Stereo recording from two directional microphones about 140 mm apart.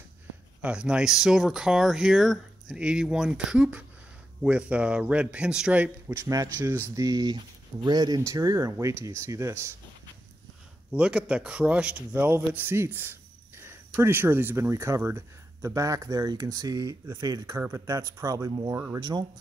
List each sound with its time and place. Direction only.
0.6 s a man's voice: 5° right (ahead or behind)
6.2 s speech: 20° right (ahead or behind)
10.9 s a man's voice: 5° right (ahead or behind); by 19.2 s 30° right (ahead or behind)